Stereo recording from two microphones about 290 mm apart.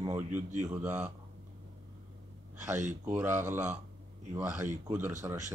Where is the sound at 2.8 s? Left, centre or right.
Right.